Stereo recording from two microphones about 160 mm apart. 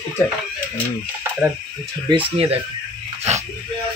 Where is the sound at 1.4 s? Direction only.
10° right (ahead or behind).